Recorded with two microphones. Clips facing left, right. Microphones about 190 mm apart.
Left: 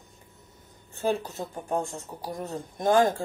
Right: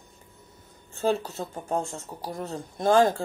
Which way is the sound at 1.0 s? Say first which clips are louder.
Right 2 dB; 15° left (ahead or behind).